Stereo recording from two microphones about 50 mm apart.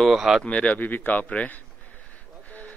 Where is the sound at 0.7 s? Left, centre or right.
Left.